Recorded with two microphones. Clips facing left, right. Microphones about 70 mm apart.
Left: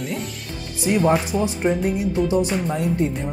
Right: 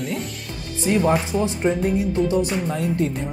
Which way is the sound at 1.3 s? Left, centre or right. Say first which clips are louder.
Even; centre.